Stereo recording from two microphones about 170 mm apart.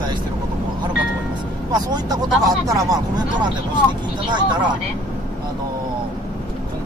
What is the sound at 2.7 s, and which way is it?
Speech, 20° right (ahead or behind).